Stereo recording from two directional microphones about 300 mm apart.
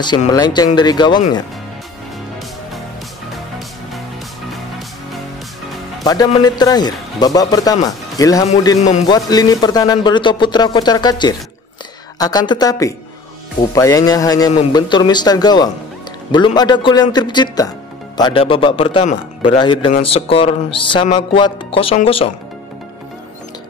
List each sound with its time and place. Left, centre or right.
0.0 s speech: centre
4.5 s music: centre
6.0 s speech: centre
19.9 s music: centre